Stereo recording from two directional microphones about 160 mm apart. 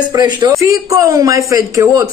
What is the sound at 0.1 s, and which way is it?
Speech, 25° right (ahead or behind).